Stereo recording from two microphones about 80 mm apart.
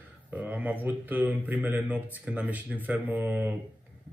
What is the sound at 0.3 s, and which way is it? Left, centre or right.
A man's voice, right.